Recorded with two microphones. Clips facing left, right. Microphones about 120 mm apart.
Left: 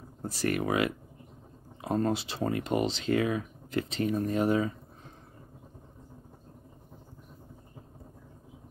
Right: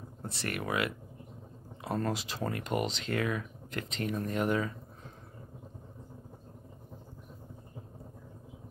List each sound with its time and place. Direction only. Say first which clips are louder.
0.2 s speech: left 7 dB; 30° left (ahead or behind)